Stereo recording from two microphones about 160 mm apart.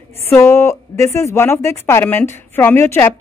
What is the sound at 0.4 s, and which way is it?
Speech, 15° left (ahead or behind).